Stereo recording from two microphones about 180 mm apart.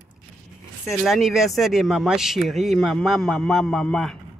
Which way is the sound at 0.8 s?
Centre (ahead or behind).